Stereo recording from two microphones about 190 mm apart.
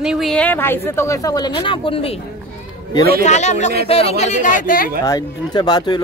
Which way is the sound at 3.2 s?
35° left (ahead or behind).